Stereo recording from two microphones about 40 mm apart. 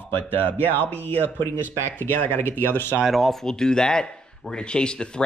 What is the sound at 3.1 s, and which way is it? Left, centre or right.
Speech, centre.